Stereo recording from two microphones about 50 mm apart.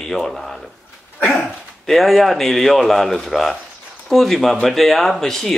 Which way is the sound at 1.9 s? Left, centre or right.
Centre.